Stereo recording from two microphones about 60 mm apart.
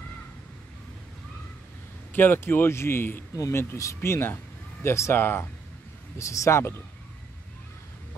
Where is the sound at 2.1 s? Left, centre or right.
Left.